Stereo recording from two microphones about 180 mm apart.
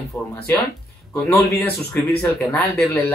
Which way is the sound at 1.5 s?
15° left (ahead or behind).